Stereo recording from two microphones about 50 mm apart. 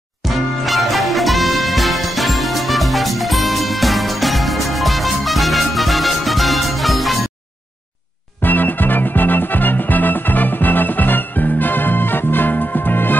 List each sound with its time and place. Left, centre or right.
0.3 s music: centre
8.4 s music: left